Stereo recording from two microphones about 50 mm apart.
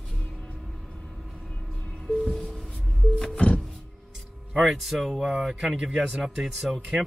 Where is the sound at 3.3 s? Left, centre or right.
Left.